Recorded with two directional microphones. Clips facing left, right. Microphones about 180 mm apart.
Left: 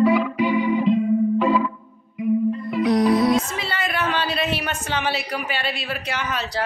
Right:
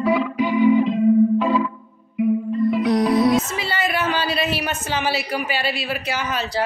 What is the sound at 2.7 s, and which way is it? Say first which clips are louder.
Speech: even; centre (ahead or behind).